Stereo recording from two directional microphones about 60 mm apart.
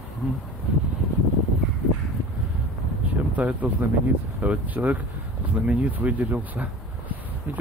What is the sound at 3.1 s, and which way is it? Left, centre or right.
Speech, right.